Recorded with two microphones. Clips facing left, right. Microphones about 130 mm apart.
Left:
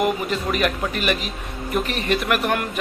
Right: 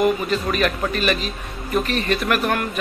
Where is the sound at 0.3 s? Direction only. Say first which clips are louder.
Right 1 dB; 15° left (ahead or behind).